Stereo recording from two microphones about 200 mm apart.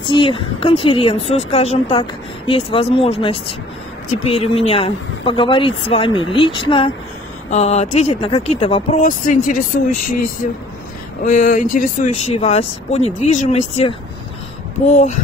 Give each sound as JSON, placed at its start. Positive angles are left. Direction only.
{"t": 0.1, "sound": "a woman's voice", "side_deg": 25}